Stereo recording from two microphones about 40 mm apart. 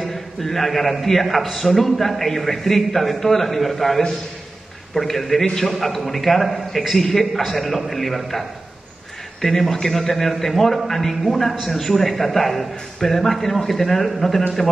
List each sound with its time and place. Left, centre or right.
0.1 s a man's voice: centre